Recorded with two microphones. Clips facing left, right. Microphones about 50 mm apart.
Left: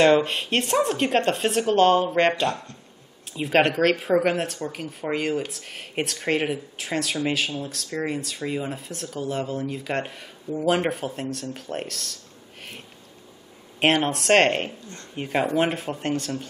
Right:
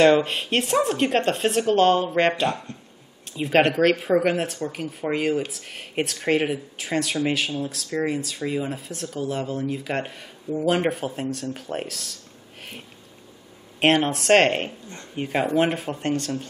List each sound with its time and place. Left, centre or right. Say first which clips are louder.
0.0 s speech: right 1 dB; centre
2.5 s speech: right 2 dB; right
3.3 s speech: right 1 dB; centre
13.7 s speech: right 1 dB; centre